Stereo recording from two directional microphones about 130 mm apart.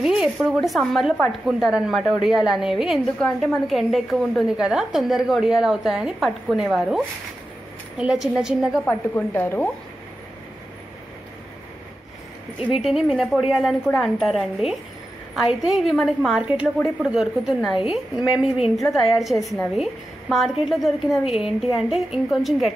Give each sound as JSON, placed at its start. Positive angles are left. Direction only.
{"t": 0.0, "sound": "a woman's voice", "side_deg": -5}
{"t": 8.0, "sound": "a woman's voice", "side_deg": -5}
{"t": 8.8, "sound": "speech", "side_deg": 15}
{"t": 12.7, "sound": "a woman's voice", "side_deg": 0}